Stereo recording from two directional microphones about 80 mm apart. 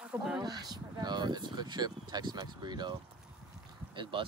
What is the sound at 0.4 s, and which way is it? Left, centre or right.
Speech, right.